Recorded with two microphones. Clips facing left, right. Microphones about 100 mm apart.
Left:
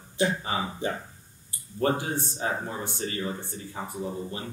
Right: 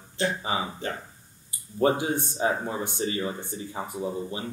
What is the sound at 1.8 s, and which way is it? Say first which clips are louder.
Speech: right 3 dB; 15° right (ahead or behind).